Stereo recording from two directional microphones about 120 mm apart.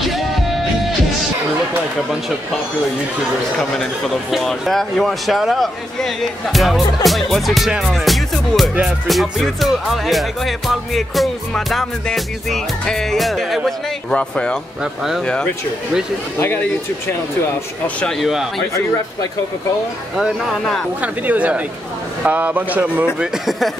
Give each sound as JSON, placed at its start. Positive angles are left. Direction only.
{"t": 4.3, "sound": "speech", "side_deg": 0}
{"t": 8.7, "sound": "a man's voice", "side_deg": -10}
{"t": 9.1, "sound": "speech", "side_deg": 0}
{"t": 16.3, "sound": "speech", "side_deg": 15}
{"t": 18.0, "sound": "speech", "side_deg": 0}
{"t": 20.2, "sound": "speech", "side_deg": 0}
{"t": 21.0, "sound": "a man's voice", "side_deg": -10}